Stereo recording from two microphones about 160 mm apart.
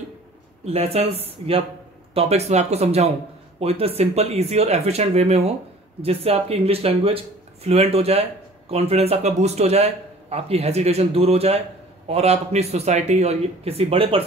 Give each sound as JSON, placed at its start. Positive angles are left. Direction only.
{"t": 0.7, "sound": "speech", "side_deg": -40}